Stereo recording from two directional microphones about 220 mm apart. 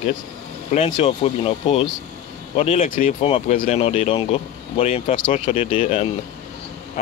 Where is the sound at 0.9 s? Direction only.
30° left (ahead or behind).